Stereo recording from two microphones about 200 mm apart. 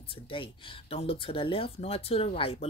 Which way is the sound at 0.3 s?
25° left (ahead or behind).